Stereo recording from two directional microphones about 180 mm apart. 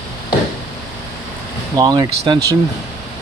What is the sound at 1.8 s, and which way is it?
Speech, 20° right (ahead or behind).